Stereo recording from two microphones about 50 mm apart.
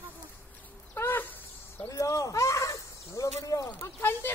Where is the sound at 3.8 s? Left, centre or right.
Left.